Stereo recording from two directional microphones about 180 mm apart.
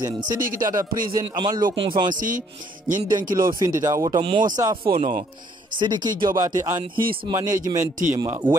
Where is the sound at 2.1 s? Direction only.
45° right (ahead or behind).